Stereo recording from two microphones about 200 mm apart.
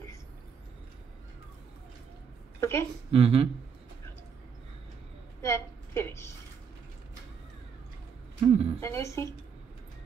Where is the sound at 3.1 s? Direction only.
30° right (ahead or behind).